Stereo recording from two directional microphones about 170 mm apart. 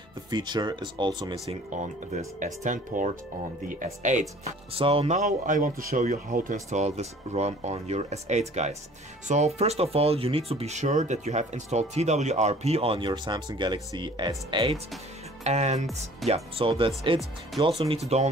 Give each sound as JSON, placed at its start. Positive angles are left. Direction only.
{"t": 0.3, "sound": "speech", "side_deg": -25}
{"t": 1.5, "sound": "speech", "side_deg": -45}
{"t": 4.7, "sound": "speech", "side_deg": -35}
{"t": 15.4, "sound": "speech", "side_deg": -40}